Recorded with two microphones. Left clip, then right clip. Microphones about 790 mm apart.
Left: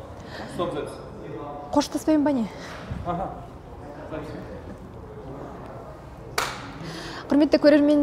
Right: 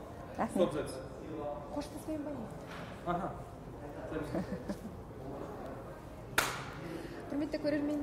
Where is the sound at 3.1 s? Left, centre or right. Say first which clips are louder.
Left 7 dB; left.